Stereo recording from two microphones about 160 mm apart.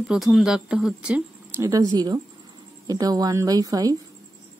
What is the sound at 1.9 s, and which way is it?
A woman's voice, 25° right (ahead or behind).